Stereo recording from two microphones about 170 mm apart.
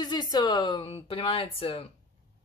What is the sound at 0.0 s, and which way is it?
Speech, 25° left (ahead or behind).